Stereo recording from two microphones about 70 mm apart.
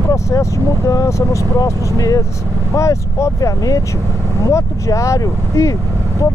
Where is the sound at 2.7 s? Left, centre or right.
Left.